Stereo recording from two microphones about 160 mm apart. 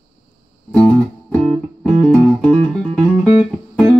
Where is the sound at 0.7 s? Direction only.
10° left (ahead or behind).